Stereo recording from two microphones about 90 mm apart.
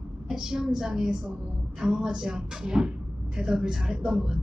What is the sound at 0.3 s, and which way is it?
A man's voice, 5° right (ahead or behind).